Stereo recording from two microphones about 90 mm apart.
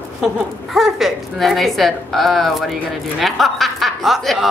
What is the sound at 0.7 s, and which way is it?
A woman's voice, centre (ahead or behind).